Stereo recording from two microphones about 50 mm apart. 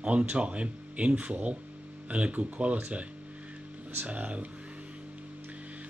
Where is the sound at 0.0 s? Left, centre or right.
Right.